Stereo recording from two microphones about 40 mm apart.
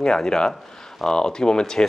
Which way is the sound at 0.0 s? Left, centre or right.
Centre.